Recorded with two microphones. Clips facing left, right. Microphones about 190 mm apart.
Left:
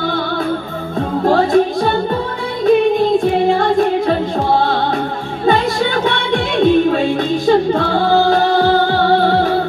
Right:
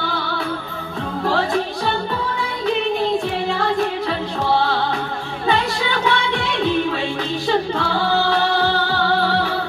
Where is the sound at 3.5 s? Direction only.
45° left (ahead or behind).